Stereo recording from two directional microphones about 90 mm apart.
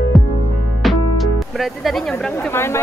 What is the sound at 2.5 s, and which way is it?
Speech, 30° left (ahead or behind).